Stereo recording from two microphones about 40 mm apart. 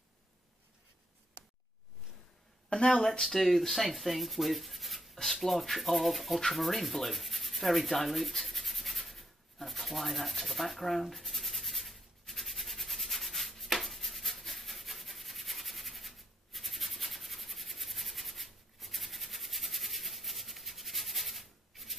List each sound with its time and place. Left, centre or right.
2.7 s speech: left
3.1 s rub: centre
13.7 s a sound: centre